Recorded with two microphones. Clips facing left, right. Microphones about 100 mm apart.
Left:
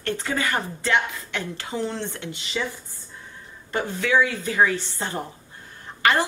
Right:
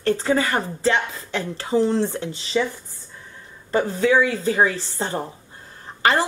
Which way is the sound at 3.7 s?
35° right (ahead or behind).